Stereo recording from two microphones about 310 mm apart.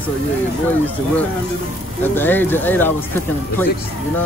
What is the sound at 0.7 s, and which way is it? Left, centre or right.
Speech, centre.